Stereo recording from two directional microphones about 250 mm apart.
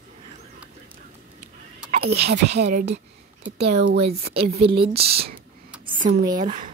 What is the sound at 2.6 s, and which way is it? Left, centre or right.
Speech, right.